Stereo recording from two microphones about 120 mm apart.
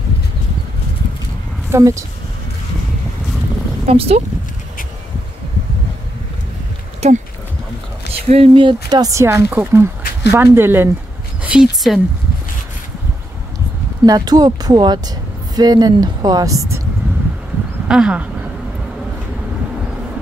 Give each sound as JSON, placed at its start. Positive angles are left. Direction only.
{"t": 1.7, "sound": "speech", "side_deg": -25}
{"t": 3.8, "sound": "speech", "side_deg": -55}
{"t": 7.0, "sound": "speech", "side_deg": -65}
{"t": 8.3, "sound": "speech", "side_deg": -50}
{"t": 9.1, "sound": "speech", "side_deg": -20}
{"t": 11.4, "sound": "speech", "side_deg": -5}
{"t": 14.0, "sound": "speech", "side_deg": -35}
{"t": 17.8, "sound": "speech", "side_deg": -5}